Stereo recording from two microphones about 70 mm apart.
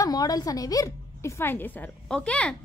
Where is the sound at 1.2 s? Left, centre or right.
Left; by 2.6 s centre.